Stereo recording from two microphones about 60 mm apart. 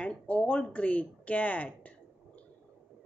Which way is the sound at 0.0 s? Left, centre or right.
Centre.